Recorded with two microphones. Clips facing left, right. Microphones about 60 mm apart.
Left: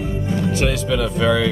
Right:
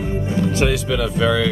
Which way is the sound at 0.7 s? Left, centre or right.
Centre.